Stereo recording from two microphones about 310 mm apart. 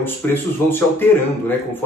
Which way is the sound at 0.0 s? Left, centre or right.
Centre.